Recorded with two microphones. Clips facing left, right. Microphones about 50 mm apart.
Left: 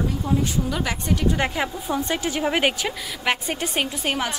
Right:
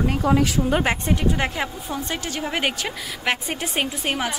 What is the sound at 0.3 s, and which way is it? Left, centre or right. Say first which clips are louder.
Speech: right 4 dB; right.